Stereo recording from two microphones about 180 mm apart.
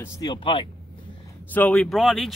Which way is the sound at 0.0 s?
25° left (ahead or behind).